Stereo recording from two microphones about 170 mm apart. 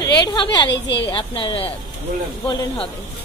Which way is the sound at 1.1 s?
30° left (ahead or behind).